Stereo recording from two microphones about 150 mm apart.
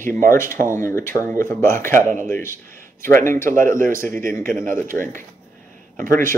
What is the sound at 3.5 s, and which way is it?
Speech, 65° right (ahead or behind).